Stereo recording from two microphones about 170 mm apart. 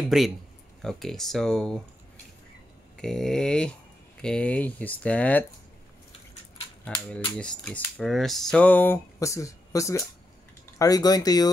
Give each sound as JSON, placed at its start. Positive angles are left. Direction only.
{"t": 0.1, "sound": "speech", "side_deg": 0}
{"t": 3.0, "sound": "speech", "side_deg": 5}
{"t": 6.8, "sound": "speech", "side_deg": 5}